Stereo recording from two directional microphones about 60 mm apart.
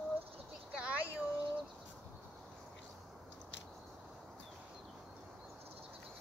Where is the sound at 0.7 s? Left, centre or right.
Centre.